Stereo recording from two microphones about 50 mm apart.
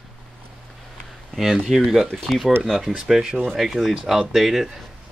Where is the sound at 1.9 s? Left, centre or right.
Centre.